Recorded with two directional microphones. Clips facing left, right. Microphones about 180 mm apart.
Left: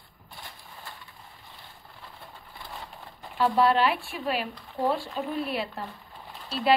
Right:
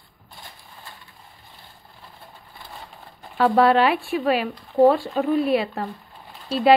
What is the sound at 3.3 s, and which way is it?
Speech, 90° right.